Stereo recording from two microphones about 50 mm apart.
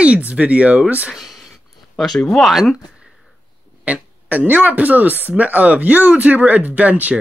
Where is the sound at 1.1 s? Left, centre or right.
Centre.